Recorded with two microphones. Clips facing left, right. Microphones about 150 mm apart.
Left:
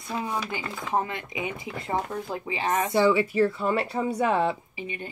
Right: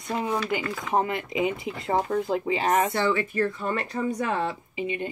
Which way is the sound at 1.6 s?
20° right (ahead or behind).